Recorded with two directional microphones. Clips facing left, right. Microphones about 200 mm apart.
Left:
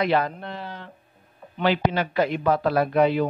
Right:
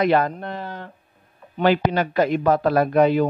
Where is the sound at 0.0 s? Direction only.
50° right (ahead or behind).